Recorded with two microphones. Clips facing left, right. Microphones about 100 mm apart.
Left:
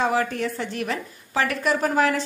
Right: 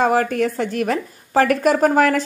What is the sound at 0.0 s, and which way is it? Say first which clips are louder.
A woman's voice: right 6 dB; 50° right (ahead or behind).